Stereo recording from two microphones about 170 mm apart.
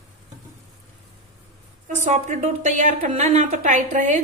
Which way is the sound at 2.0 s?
45° right (ahead or behind).